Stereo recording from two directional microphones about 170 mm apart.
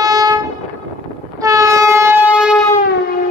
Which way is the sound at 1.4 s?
20° right (ahead or behind).